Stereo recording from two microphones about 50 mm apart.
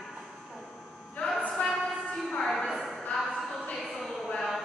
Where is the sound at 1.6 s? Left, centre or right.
Left.